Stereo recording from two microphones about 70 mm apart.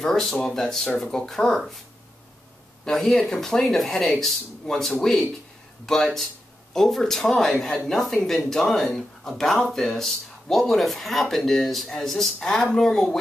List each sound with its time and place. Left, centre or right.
0.0 s speech: centre
2.8 s speech: centre